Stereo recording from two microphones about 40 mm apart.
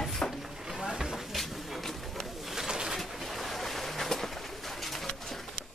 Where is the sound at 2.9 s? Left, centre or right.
Centre.